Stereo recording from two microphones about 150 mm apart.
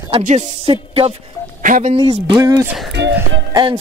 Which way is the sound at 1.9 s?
30° right (ahead or behind).